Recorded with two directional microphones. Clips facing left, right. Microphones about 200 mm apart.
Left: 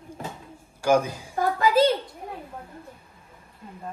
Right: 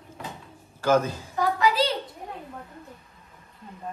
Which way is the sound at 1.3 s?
50° left (ahead or behind).